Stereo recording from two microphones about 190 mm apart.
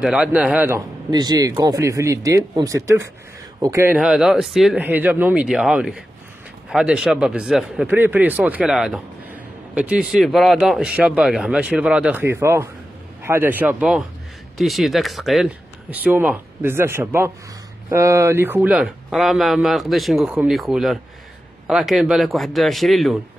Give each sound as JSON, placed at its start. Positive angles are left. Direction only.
{"t": 0.0, "sound": "a man's voice", "side_deg": -5}